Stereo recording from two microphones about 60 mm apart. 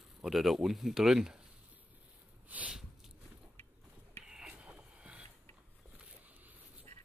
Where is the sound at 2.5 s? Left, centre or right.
Right.